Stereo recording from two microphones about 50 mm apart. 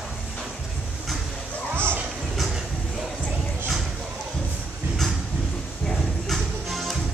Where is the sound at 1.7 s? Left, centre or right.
Right.